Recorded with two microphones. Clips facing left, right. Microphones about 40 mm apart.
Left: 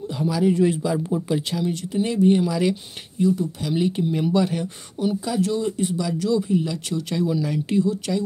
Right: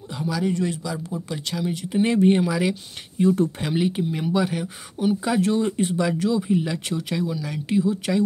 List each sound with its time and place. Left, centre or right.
0.1 s speech: centre
1.6 s speech: centre
2.0 s speech: right
2.4 s speech: centre
3.7 s speech: centre
4.1 s speech: centre
5.0 s speech: right
6.3 s speech: right
7.1 s speech: centre
8.1 s speech: right